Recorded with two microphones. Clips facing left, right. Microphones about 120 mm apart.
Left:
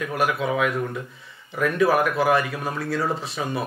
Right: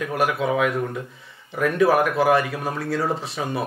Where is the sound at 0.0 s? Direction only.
45° right (ahead or behind).